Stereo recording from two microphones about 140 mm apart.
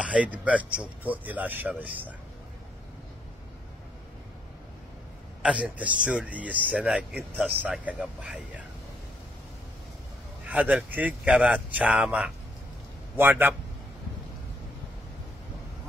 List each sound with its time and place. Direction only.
0.0 s speech: 10° right (ahead or behind)
5.4 s speech: 10° right (ahead or behind)
10.5 s speech: 10° right (ahead or behind)